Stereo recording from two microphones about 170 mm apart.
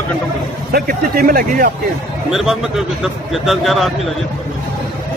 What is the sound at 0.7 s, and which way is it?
Speech, 60° right (ahead or behind).